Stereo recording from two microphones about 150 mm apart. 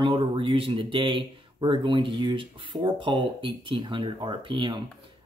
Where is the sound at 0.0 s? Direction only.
35° right (ahead or behind).